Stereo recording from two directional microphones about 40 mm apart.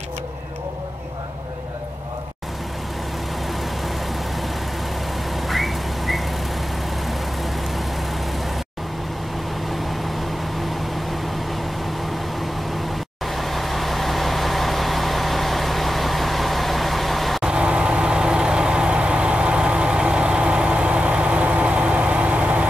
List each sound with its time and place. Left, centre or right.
5.3 s a sound: centre
13.3 s vehicle: centre
17.4 s vehicle: right